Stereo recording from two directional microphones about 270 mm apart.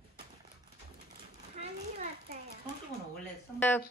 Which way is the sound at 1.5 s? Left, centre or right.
Right.